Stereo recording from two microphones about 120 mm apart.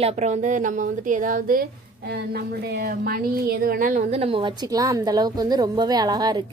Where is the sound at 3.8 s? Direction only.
90° right.